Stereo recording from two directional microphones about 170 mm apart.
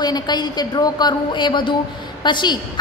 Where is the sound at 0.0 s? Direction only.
25° left (ahead or behind).